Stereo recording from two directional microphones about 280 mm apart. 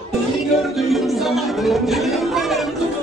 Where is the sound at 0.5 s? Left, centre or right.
Centre.